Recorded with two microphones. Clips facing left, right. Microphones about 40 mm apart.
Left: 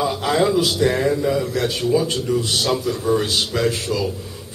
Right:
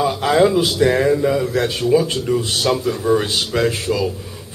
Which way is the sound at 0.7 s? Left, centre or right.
Centre.